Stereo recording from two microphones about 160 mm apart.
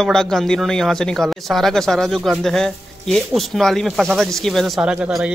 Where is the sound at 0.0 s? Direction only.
5° left (ahead or behind).